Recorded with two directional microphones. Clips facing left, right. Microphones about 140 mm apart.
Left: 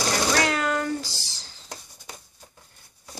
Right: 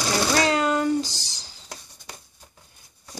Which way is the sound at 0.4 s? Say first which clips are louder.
Right 3 dB; 25° right (ahead or behind).